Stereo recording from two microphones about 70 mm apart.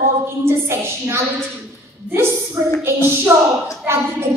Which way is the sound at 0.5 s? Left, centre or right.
Right.